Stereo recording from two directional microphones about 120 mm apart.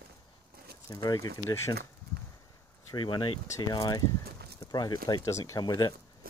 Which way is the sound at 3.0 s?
45° left (ahead or behind).